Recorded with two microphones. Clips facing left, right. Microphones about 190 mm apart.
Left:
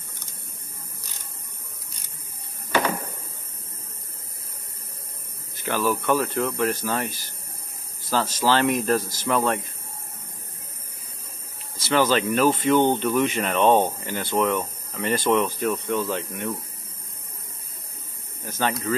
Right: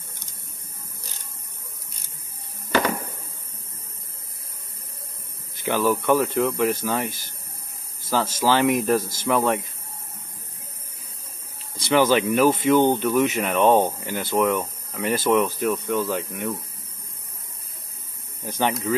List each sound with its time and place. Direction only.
5.6 s speech: 15° right (ahead or behind)
11.8 s speech: 15° right (ahead or behind)
18.4 s speech: 20° right (ahead or behind)